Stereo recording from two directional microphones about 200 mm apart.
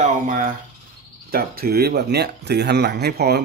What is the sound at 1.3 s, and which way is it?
Speech, 50° right (ahead or behind).